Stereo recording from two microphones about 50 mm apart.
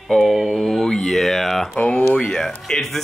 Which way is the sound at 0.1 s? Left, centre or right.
Centre.